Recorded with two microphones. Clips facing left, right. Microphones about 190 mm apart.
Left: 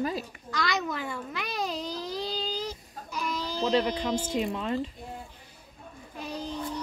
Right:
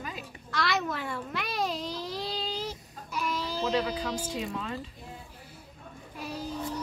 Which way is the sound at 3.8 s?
25° left (ahead or behind).